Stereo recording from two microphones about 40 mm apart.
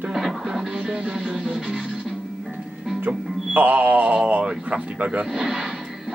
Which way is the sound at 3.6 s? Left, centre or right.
Right.